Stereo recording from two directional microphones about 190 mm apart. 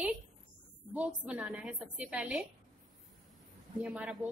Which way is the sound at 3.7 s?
10° right (ahead or behind).